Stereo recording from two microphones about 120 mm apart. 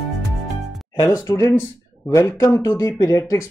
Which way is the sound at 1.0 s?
30° left (ahead or behind).